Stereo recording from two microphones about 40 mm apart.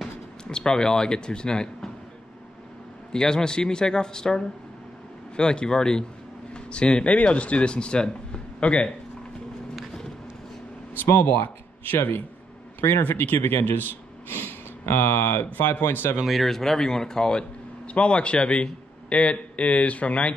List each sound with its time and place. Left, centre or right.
0.0 s speech: centre
3.1 s a man's voice: centre
11.0 s speech: left
11.3 s speech: left
15.2 s speech: left
16.3 s a man's voice: centre; by 20.3 s left